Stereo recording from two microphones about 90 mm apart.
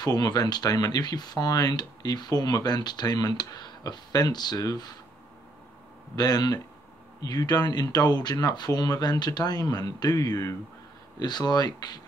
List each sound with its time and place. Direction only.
0.0 s speech: 45° left (ahead or behind)
6.1 s speech: 50° left (ahead or behind)